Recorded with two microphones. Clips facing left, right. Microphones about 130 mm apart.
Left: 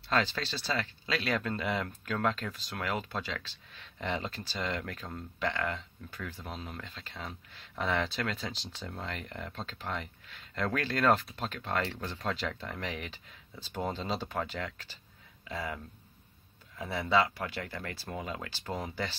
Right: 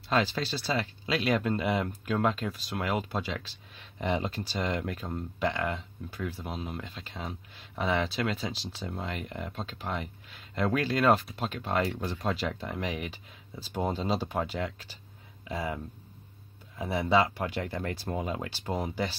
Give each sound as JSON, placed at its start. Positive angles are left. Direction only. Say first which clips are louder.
{"t": 0.1, "sound": "speech", "louder": "right 3 dB", "side_deg": -10}